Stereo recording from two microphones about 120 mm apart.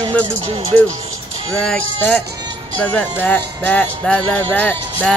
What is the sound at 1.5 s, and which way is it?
Speech, 5° left (ahead or behind).